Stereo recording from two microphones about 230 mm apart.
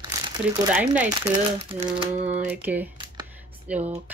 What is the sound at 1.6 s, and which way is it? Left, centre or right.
Speech, right.